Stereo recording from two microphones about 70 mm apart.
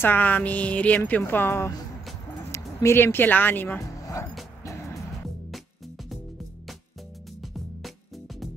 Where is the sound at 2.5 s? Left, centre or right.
Left.